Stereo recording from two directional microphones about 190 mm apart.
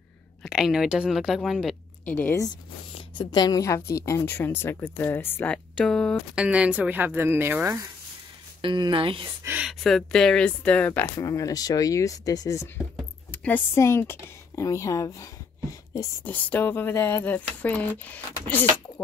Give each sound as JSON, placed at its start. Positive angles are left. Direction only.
{"t": 0.4, "sound": "a woman's voice", "side_deg": -5}
{"t": 6.3, "sound": "speech", "side_deg": -5}
{"t": 8.5, "sound": "speech", "side_deg": -25}
{"t": 9.4, "sound": "speech", "side_deg": -10}